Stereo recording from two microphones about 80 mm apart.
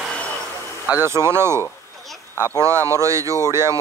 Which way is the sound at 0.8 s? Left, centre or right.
Right.